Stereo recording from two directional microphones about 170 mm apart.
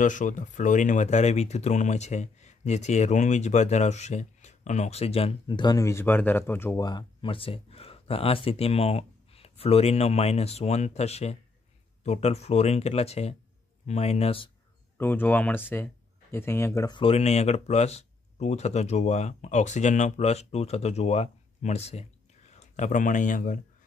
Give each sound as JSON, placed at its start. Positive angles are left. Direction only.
{"t": 0.0, "sound": "speech", "side_deg": 50}
{"t": 6.8, "sound": "speech", "side_deg": 25}
{"t": 15.0, "sound": "speech", "side_deg": 10}
{"t": 17.0, "sound": "speech", "side_deg": 35}